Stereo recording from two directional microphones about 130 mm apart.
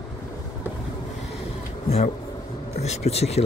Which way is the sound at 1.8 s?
50° left (ahead or behind).